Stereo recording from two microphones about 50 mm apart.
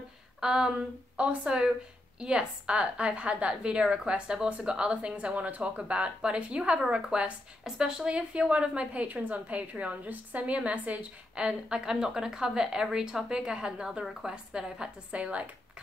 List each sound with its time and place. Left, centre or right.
0.4 s speech: centre
0.7 s speech: right
11.3 s speech: centre
15.1 s speech: right